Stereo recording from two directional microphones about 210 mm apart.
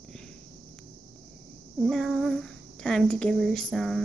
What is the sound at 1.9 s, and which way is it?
Speech, centre (ahead or behind).